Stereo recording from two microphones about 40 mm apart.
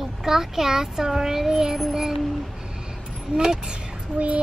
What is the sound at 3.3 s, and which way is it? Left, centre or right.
Speech, centre.